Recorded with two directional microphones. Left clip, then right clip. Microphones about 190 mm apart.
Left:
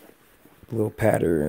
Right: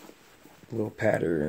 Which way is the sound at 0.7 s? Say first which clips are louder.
Left 4 dB; 50° left (ahead or behind).